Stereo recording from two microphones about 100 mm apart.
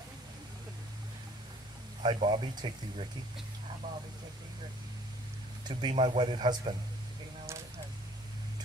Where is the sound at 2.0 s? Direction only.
50° right (ahead or behind).